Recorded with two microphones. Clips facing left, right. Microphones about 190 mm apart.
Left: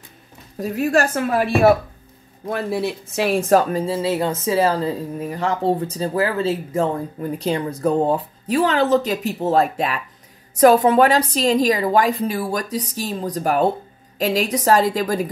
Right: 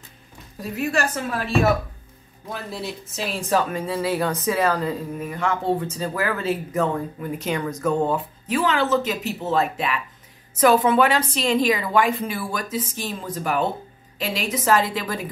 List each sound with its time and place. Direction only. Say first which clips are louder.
0.6 s a woman's voice: left 6 dB; 40° left (ahead or behind)